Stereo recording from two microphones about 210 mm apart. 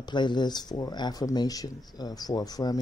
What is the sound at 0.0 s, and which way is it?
Speech, 20° left (ahead or behind).